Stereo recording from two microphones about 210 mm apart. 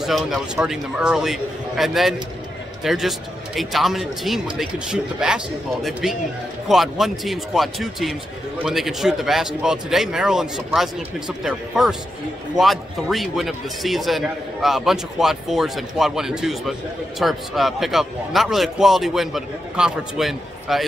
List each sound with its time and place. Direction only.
0.0 s a man's voice: centre (ahead or behind)